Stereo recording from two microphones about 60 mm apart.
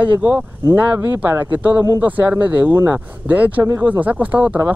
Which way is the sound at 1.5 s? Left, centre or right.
Right.